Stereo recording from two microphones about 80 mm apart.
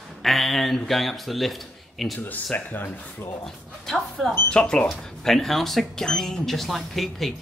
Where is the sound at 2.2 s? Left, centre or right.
Left.